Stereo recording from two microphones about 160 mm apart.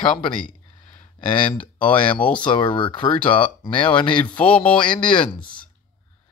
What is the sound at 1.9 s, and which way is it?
Speech, 30° left (ahead or behind).